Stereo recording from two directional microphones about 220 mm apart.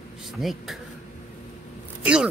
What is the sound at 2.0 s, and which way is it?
Zipper, 5° right (ahead or behind).